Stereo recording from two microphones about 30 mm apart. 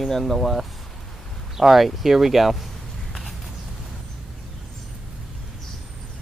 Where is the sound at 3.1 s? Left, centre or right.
Centre.